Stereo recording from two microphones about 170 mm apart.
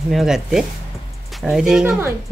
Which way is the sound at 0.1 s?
Centre (ahead or behind).